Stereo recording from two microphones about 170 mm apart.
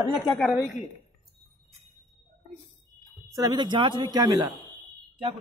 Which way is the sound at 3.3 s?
25° right (ahead or behind).